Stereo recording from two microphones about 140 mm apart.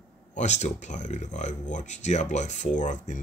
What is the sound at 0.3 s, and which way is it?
Speech, 60° left (ahead or behind).